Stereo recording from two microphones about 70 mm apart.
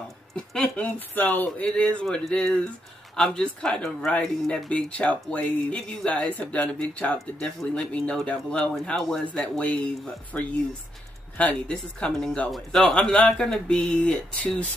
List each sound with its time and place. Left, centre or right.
0.6 s speech: left
12.4 s a man's voice: centre
12.8 s speech: centre